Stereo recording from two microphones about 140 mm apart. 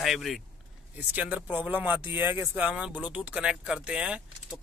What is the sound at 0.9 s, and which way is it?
A man's voice, 10° right (ahead or behind).